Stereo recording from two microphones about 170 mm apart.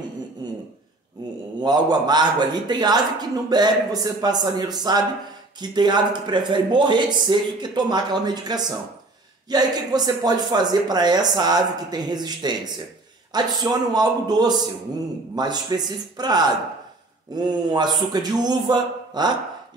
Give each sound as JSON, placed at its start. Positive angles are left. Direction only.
{"t": 1.2, "sound": "mantra", "side_deg": -25}
{"t": 1.6, "sound": "a man's voice", "side_deg": -25}